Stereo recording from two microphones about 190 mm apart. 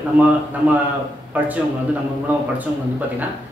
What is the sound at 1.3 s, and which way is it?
A man's voice, 10° right (ahead or behind).